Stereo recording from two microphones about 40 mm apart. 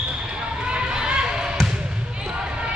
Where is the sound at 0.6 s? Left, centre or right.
Right.